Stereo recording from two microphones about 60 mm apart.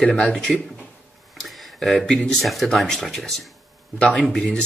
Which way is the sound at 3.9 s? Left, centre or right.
Centre.